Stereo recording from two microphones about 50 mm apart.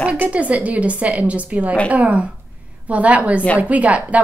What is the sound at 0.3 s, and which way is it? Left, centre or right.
A woman's voice, right.